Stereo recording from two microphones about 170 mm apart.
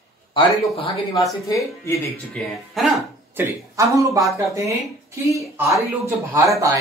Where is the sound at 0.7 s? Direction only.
35° left (ahead or behind).